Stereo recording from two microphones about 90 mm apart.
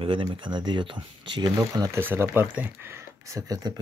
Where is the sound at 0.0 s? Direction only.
75° right (ahead or behind); by 1.5 s 60° right (ahead or behind).